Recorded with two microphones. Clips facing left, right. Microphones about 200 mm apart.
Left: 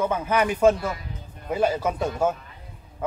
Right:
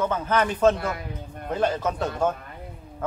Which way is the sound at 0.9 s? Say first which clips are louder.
Right 5 dB; 60° right (ahead or behind).